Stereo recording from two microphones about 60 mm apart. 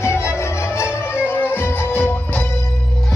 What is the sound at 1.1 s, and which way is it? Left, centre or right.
Music, left.